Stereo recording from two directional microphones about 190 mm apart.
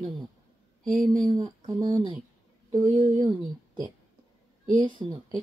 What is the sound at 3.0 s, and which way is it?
Speech, 20° left (ahead or behind).